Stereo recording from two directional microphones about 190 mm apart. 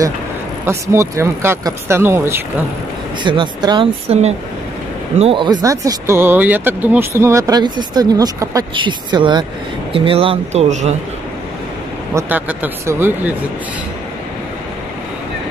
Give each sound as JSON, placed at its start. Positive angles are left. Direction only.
{"t": 0.7, "sound": "speech", "side_deg": -15}
{"t": 3.3, "sound": "speech", "side_deg": -25}
{"t": 12.1, "sound": "speech", "side_deg": -10}